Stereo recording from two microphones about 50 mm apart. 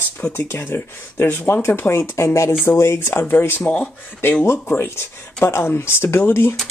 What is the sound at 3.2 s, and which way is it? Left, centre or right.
Speech, left.